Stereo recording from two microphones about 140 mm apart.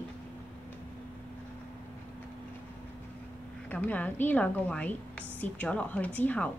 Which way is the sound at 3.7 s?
10° left (ahead or behind).